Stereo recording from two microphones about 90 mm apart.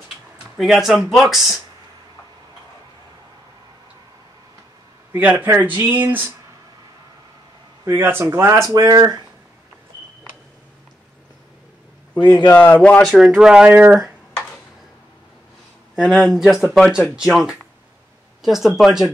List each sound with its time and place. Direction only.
0.6 s speech: centre (ahead or behind)
5.1 s speech: 20° right (ahead or behind)
7.8 s speech: 25° right (ahead or behind)
8.6 s speech: 45° right (ahead or behind)
12.2 s speech: 55° left (ahead or behind)
12.8 s speech: 15° left (ahead or behind)
13.1 s speech: 5° right (ahead or behind)
13.7 s speech: 20° right (ahead or behind)
15.9 s speech: 5° right (ahead or behind)